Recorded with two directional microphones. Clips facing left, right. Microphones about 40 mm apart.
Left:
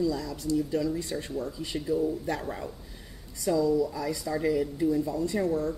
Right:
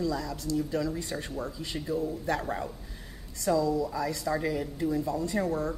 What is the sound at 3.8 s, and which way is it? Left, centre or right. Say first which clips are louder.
A woman's voice: left 1 dB; centre.